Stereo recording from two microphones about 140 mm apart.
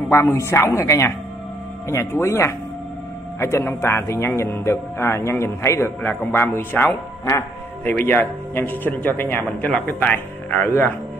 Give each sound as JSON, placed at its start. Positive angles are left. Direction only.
{"t": 0.1, "sound": "a man's voice", "side_deg": 20}